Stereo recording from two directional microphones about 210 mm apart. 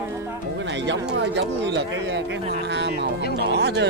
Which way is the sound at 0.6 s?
55° right (ahead or behind).